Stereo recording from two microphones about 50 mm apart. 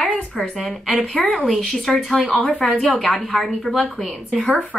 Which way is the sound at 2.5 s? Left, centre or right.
Centre.